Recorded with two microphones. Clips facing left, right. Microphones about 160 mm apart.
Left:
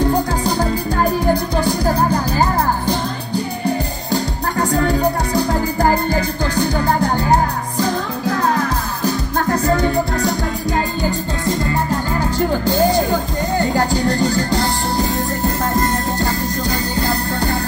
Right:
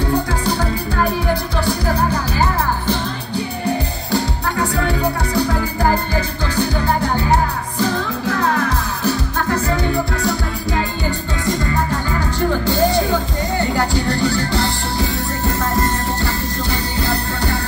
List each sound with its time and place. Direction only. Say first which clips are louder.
4.6 s music: left 4 dB; 40° left (ahead or behind)
13.7 s music: left 2 dB; 40° left (ahead or behind)